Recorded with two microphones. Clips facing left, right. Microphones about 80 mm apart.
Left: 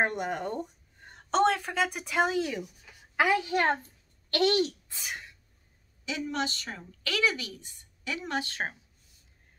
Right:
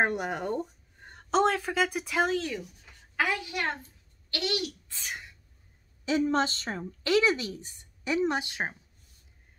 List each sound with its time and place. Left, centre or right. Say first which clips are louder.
0.0 s speech: right 1 dB; centre
2.3 s speech: left 1 dB; centre
3.2 s a child's voice: left 4 dB; left
3.4 s a woman's voice: left 6 dB; left
4.8 s a sound: even; centre
6.0 s a woman's voice: right 6 dB; right; by 8.7 s centre